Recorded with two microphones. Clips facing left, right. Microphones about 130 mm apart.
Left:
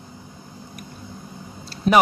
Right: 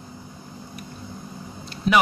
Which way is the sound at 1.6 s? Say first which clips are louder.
Left 2 dB; 35° left (ahead or behind).